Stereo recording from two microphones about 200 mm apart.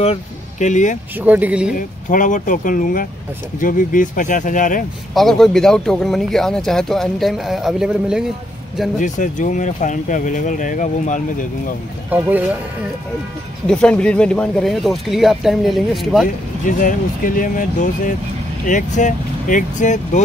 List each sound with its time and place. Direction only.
0.0 s speech: 35° left (ahead or behind)
1.1 s speech: 10° right (ahead or behind)
1.8 s speech: 40° left (ahead or behind)
5.1 s speech: centre (ahead or behind)
9.0 s speech: 40° left (ahead or behind)
12.1 s speech: 10° right (ahead or behind)
13.7 s speech: 5° left (ahead or behind)
16.6 s speech: 40° left (ahead or behind)